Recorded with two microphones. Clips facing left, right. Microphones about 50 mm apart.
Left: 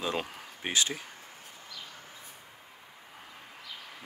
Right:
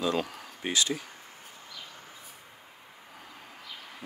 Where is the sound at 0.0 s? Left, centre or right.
Left.